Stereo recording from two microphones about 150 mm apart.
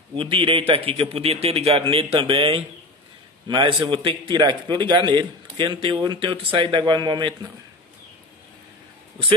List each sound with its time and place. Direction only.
0.1 s a man's voice: 35° right (ahead or behind)